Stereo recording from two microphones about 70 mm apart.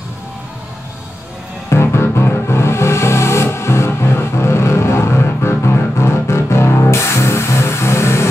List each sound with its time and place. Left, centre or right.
1.7 s music: left